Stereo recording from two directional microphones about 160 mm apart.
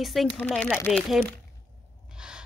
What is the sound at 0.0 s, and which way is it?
A woman's voice, centre (ahead or behind).